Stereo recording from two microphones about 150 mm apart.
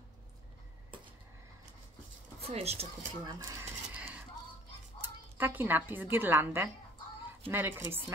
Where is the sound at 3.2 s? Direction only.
20° right (ahead or behind).